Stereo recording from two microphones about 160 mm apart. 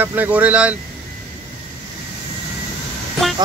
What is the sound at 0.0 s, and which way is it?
Speech, 10° right (ahead or behind).